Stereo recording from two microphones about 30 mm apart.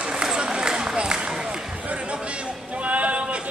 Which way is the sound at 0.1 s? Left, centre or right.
Right.